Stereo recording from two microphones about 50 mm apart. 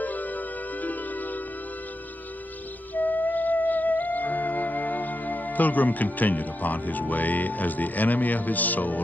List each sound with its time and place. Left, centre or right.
0.0 s music: left
2.9 s music: left